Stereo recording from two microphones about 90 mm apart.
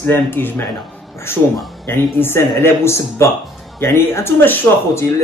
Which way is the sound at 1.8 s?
25° left (ahead or behind).